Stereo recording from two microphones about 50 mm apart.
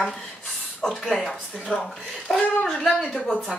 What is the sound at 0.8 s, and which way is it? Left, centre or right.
A woman's voice, centre.